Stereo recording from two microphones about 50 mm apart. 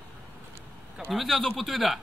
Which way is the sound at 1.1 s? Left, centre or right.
Centre.